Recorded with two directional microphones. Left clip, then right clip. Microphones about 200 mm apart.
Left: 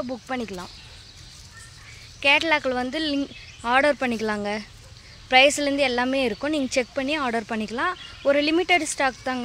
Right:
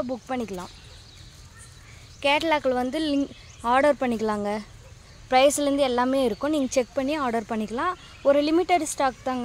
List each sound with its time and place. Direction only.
0.0 s speech: 5° right (ahead or behind)
2.1 s speech: 10° right (ahead or behind)